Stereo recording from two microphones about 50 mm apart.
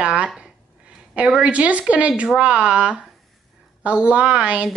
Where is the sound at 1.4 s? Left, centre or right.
Right.